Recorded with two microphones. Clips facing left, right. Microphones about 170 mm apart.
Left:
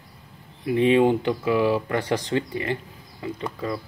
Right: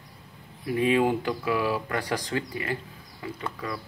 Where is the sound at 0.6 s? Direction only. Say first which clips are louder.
Left 5 dB; 25° left (ahead or behind).